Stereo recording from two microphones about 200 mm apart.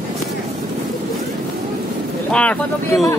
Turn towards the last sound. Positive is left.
turn(degrees=5)  # may be behind; listen again after turning